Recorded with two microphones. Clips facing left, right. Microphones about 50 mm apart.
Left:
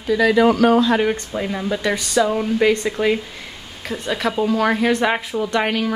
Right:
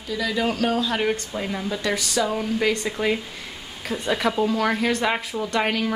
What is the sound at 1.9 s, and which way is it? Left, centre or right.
Speech, centre.